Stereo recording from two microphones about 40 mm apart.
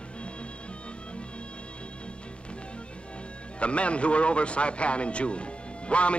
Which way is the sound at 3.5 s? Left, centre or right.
Left.